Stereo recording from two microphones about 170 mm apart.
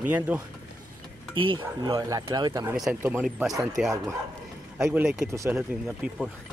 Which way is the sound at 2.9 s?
10° right (ahead or behind).